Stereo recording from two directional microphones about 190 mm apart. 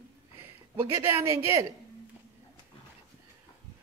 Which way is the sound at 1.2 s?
15° right (ahead or behind).